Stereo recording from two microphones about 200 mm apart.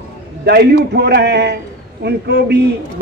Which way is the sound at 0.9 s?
55° right (ahead or behind).